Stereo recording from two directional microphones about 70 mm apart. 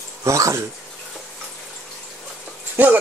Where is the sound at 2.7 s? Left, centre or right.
Right.